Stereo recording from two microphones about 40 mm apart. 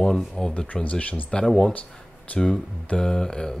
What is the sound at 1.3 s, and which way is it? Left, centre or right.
Speech, centre.